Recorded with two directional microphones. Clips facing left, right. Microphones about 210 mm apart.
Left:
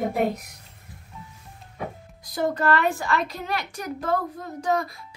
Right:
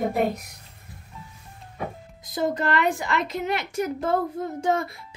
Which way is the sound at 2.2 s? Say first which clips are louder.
Left 1 dB; 20° right (ahead or behind).